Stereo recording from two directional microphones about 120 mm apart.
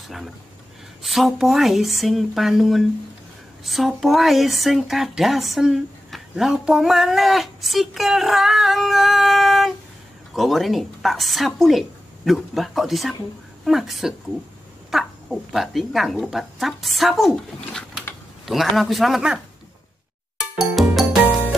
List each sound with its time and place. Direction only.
1.0 s speech: centre (ahead or behind)
18.4 s speech: centre (ahead or behind)
20.7 s music: centre (ahead or behind)